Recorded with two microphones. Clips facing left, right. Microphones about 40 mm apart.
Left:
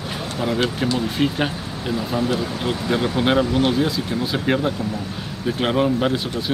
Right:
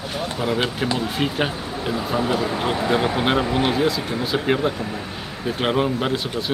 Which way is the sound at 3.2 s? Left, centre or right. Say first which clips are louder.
Left 2 dB; centre.